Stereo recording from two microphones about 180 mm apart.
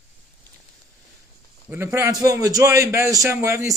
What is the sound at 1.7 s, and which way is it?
A man's voice, 15° right (ahead or behind).